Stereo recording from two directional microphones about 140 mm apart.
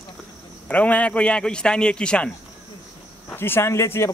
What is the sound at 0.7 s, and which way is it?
Speech, 10° left (ahead or behind).